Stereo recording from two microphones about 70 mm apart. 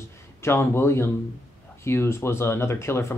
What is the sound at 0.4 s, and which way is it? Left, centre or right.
Speech, left.